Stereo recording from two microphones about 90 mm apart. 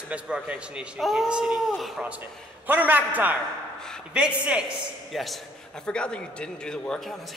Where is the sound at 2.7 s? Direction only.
20° right (ahead or behind).